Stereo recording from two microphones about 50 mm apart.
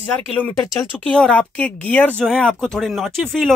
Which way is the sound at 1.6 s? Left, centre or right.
Left.